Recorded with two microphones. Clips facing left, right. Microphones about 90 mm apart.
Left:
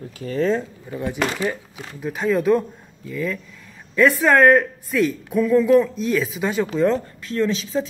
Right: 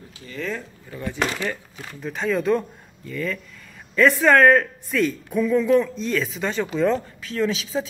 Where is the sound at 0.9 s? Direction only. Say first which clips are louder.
Left 2 dB; 20° left (ahead or behind).